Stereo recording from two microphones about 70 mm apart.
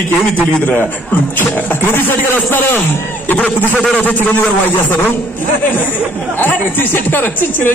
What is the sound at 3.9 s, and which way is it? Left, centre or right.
Speech, left.